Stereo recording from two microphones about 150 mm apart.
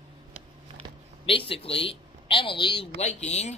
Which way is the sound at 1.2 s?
40° left (ahead or behind).